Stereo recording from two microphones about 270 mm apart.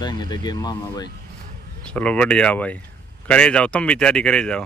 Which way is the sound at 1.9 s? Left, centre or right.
Centre.